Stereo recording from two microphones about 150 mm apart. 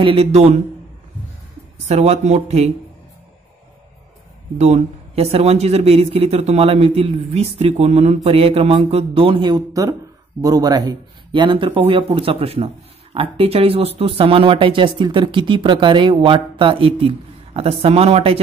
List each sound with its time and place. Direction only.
0.0 s speech: 40° right (ahead or behind)
1.9 s speech: 50° right (ahead or behind)
4.6 s speech: 45° right (ahead or behind)